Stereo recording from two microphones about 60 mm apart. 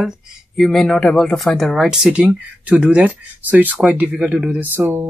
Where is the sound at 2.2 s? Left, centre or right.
Right.